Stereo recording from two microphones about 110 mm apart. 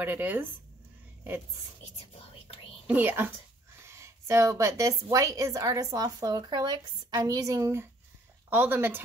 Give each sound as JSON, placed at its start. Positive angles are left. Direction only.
{"t": 0.0, "sound": "speech", "side_deg": -15}
{"t": 2.9, "sound": "a woman's voice", "side_deg": -20}